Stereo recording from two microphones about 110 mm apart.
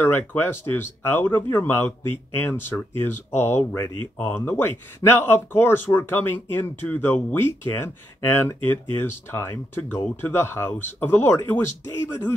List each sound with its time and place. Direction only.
0.0 s speech: 20° left (ahead or behind)